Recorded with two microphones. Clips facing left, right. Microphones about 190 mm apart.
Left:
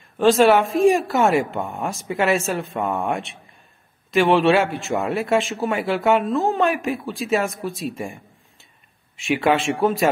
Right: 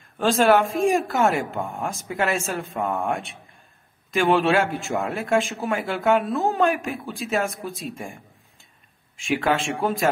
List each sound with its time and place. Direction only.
0.2 s speech: 5° left (ahead or behind)
4.2 s speech: centre (ahead or behind)
9.2 s a man's voice: 10° left (ahead or behind)